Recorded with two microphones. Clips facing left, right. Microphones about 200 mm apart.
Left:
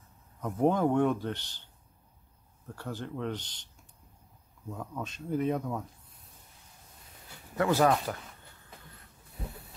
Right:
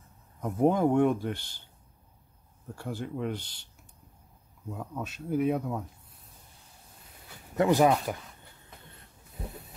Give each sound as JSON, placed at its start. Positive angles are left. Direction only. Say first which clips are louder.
{"t": 0.4, "sound": "speech", "louder": "right 2 dB", "side_deg": -10}
{"t": 2.7, "sound": "speech", "louder": "right 2 dB", "side_deg": -10}
{"t": 4.6, "sound": "speech", "louder": "right 1 dB", "side_deg": -10}
{"t": 7.5, "sound": "speech", "louder": "right 3 dB", "side_deg": -15}